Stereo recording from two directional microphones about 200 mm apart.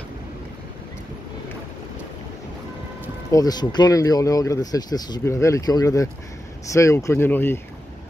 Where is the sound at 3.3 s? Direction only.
20° left (ahead or behind).